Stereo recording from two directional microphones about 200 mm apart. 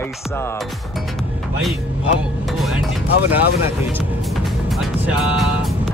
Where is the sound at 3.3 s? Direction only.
10° right (ahead or behind).